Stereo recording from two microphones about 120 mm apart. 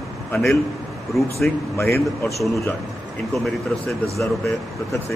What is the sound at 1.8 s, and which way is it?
Speech, 20° left (ahead or behind).